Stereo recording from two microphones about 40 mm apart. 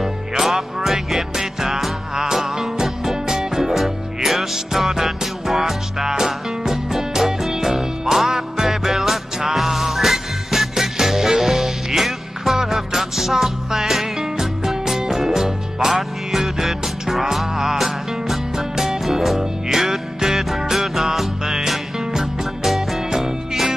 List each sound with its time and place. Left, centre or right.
0.0 s music: centre